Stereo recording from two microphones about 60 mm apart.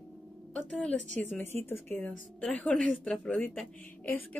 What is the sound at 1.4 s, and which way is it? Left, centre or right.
Speech, left.